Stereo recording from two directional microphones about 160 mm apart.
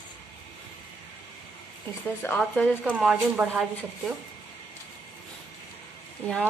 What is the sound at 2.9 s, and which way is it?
Speech, 5° right (ahead or behind).